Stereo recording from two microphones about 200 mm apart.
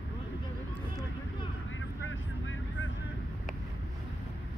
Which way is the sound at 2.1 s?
75° left (ahead or behind).